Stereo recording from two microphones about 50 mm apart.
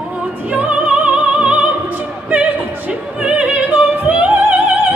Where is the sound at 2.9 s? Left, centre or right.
Right.